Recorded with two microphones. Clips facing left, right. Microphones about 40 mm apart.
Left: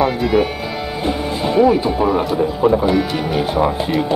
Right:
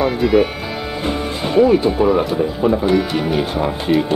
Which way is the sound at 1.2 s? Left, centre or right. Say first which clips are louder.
Left 1 dB; right.